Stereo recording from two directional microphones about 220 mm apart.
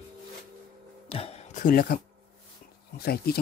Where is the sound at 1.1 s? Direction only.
25° left (ahead or behind).